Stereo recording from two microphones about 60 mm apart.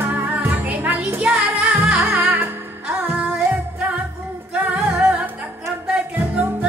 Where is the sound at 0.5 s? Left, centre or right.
Right.